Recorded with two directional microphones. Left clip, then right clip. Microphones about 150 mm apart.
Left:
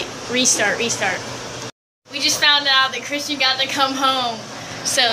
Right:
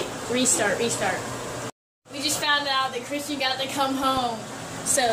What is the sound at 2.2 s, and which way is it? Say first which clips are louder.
Speech: left 8 dB; centre (ahead or behind).